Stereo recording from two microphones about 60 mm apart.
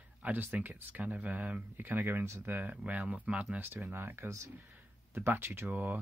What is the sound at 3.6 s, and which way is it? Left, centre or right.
Speech, right.